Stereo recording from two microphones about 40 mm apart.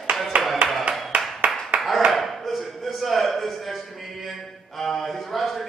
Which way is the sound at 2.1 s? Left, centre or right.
Centre.